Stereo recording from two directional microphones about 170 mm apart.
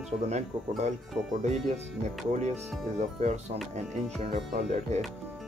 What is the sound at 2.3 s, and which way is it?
Speech, 40° right (ahead or behind).